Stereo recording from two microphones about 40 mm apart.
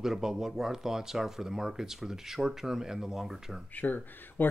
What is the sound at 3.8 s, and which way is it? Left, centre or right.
Speech, left.